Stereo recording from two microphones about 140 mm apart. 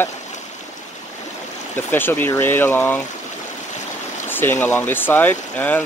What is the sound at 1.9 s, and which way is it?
Speech, 15° left (ahead or behind).